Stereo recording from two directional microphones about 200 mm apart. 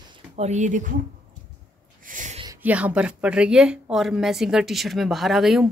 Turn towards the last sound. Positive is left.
turn(degrees=0)  # may be behind; listen again after turning